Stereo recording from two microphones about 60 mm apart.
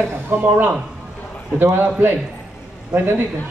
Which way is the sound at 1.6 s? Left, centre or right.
Right.